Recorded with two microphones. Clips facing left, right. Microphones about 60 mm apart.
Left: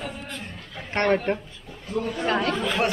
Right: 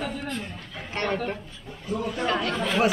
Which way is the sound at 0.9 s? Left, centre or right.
Left.